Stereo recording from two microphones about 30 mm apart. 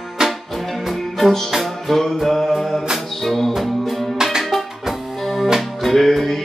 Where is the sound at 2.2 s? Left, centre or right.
Centre.